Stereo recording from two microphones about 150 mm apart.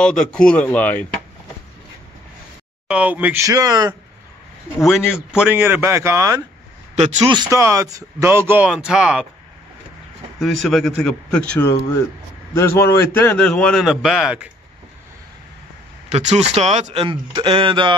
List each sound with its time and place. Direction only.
0.0 s a man's voice: 5° left (ahead or behind)
2.9 s speech: 10° right (ahead or behind)
3.4 s speech: 25° right (ahead or behind)
4.8 s speech: 5° right (ahead or behind); by 6.4 s 20° right (ahead or behind)
7.0 s a man's voice: 50° right (ahead or behind)
7.2 s speech: 25° right (ahead or behind)
8.6 s speech: 5° right (ahead or behind)
10.4 s a man's voice: centre (ahead or behind)
16.1 s speech: 50° right (ahead or behind); by 17.9 s 35° right (ahead or behind)